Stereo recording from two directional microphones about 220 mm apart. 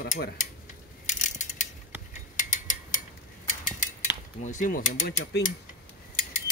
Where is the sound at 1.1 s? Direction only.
35° left (ahead or behind).